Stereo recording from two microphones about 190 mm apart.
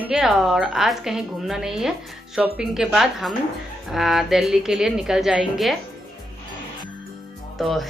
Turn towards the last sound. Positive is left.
turn(degrees=0)  # may be behind; listen again after turning